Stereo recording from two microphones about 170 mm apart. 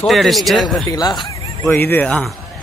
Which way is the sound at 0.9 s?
25° left (ahead or behind).